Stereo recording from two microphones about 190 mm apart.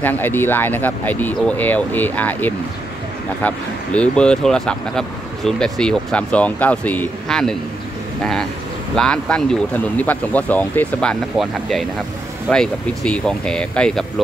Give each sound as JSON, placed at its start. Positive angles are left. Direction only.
{"t": 0.0, "sound": "speech", "side_deg": 10}
{"t": 8.9, "sound": "speech", "side_deg": 5}